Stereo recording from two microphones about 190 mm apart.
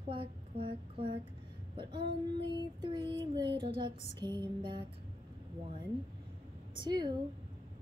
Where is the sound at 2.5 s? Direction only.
25° right (ahead or behind).